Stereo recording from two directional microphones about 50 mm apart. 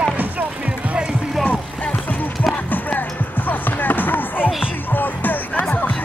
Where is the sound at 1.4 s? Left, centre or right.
Left.